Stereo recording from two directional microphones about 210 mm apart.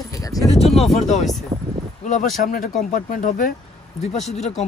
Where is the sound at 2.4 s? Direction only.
40° left (ahead or behind).